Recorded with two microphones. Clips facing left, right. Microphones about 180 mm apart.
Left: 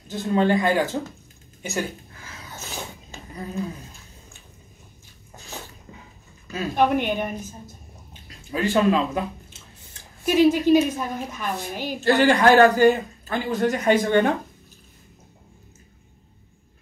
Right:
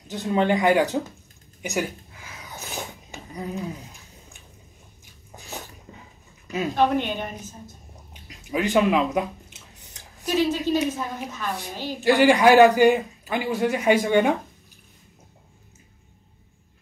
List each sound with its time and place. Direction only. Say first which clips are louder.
0.1 s a man's voice: left 1 dB; 20° right (ahead or behind)
1.6 s a sound: right 1 dB; 15° right (ahead or behind)
6.4 s a sound: right 2 dB; 20° right (ahead or behind)
6.7 s a woman's voice: left 2 dB; 10° left (ahead or behind)
8.1 s biting: right 3 dB; 15° right (ahead or behind)
10.2 s a woman's voice: left 5 dB; 15° left (ahead or behind)
12.0 s a man's voice: right 1 dB; 10° right (ahead or behind)